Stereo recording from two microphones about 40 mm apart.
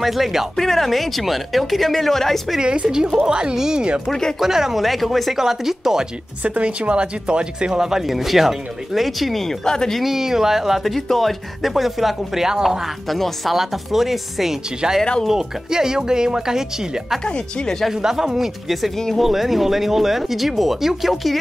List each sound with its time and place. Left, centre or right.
0.0 s speech: centre
0.6 s speech: centre
2.6 s speech: right
4.1 s speech: centre
4.4 s speech: centre
5.4 s speech: centre
6.4 s speech: right; by 8.0 s centre
8.1 s speech: centre
9.9 s speech: centre
10.9 s speech: centre
12.4 s speech: centre
17.3 s speech: left
17.9 s speech: centre